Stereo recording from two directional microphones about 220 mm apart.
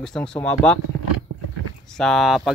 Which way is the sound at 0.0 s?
5° left (ahead or behind).